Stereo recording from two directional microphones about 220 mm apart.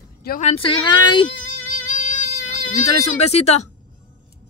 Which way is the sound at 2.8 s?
30° left (ahead or behind).